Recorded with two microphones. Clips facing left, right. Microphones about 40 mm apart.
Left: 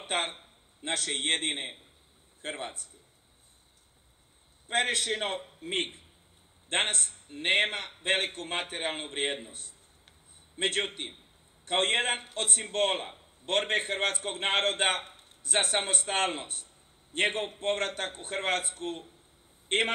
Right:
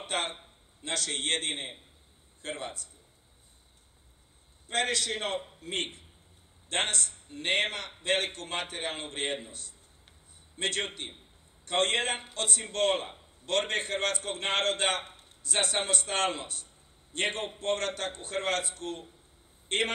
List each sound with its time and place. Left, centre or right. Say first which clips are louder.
0.0 s a man's voice: left 1 dB; left
4.6 s a man's voice: left 1 dB; left